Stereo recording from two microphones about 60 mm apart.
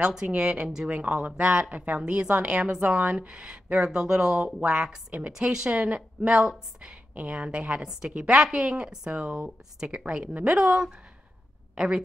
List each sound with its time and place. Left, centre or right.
0.0 s a woman's voice: centre